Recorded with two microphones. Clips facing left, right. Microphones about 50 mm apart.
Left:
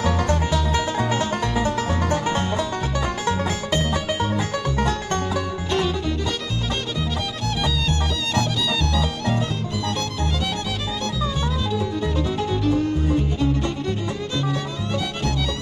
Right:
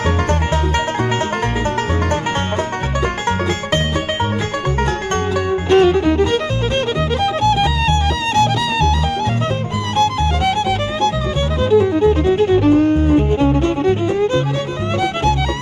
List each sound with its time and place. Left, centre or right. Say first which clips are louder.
0.0 s music: right 4 dB; right
5.7 s music: right 13 dB; right
7.4 s music: right 8 dB; right
11.7 s music: right 16 dB; right